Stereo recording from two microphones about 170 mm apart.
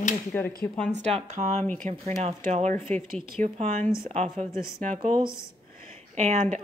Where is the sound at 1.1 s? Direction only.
45° right (ahead or behind).